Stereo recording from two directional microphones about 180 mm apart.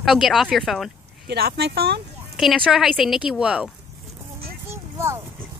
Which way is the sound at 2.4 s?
Centre (ahead or behind).